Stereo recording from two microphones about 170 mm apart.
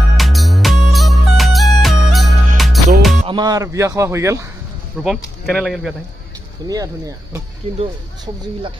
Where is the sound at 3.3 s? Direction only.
20° right (ahead or behind).